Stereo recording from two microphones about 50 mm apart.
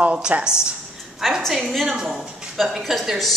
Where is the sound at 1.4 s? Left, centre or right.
Centre.